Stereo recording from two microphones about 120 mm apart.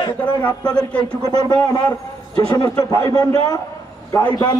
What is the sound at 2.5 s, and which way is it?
Speech, 35° left (ahead or behind).